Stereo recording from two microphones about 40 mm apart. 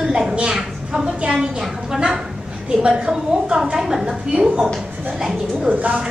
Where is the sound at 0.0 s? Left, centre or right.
Centre.